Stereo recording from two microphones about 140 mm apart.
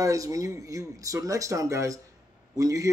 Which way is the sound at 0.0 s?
25° right (ahead or behind).